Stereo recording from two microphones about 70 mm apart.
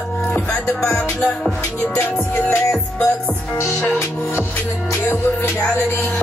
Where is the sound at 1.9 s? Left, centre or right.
Left.